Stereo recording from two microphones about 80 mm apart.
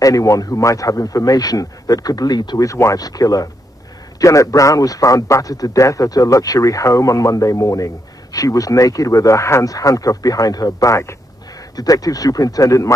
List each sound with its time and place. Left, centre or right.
0.0 s a man's voice: left
2.6 s a man's voice: left
11.7 s a man's voice: left